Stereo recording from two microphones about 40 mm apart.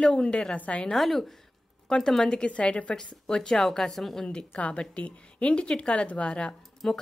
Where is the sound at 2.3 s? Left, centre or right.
Left.